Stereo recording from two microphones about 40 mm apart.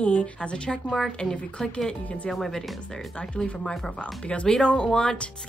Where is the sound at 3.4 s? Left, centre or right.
Left.